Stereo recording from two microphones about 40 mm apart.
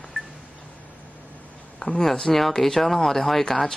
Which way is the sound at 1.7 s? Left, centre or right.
Centre.